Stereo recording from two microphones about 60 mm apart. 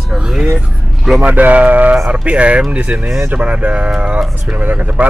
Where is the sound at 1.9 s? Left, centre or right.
Centre.